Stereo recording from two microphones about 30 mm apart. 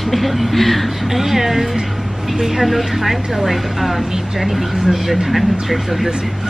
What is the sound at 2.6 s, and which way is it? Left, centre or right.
Speech, centre.